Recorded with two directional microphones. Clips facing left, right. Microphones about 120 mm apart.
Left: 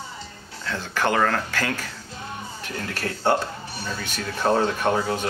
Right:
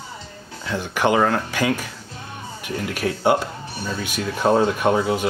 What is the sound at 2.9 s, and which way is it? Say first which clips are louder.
Speech: right 3 dB; 15° right (ahead or behind).